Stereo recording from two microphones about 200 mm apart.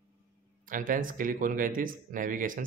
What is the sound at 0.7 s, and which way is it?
Speech, 45° right (ahead or behind).